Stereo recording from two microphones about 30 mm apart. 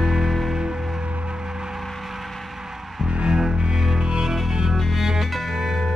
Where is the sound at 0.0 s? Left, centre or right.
Centre.